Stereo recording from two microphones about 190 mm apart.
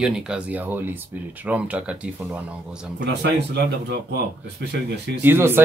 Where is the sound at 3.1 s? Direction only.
60° right (ahead or behind).